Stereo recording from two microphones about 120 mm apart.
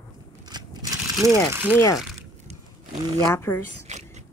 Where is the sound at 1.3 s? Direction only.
15° right (ahead or behind).